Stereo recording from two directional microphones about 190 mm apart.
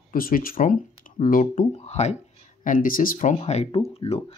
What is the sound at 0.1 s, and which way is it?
Speech, 50° left (ahead or behind).